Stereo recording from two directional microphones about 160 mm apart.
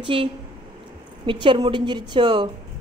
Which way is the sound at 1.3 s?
30° right (ahead or behind).